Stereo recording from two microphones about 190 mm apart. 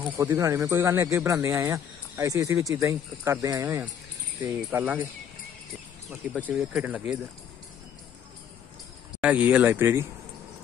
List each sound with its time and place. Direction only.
0.0 s speech: 10° right (ahead or behind)
6.4 s speech: 10° right (ahead or behind)
9.2 s speech: 5° right (ahead or behind)